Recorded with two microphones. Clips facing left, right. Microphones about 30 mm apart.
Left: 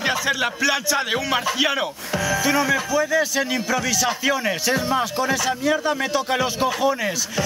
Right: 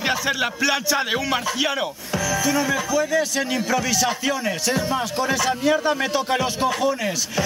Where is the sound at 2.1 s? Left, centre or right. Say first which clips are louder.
Left 1 dB; left.